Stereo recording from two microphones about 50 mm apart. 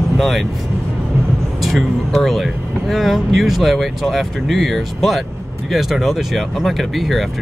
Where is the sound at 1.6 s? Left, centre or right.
Centre.